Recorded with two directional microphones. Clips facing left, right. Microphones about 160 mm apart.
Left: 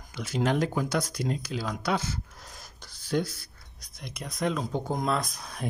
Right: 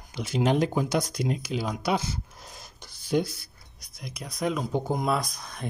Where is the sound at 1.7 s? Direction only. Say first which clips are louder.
Even; 15° right (ahead or behind).